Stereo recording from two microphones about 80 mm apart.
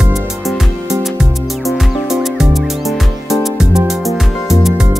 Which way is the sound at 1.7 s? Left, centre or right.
Centre.